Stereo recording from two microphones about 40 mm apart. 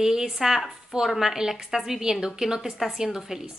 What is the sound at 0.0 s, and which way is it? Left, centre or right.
A woman's voice, centre.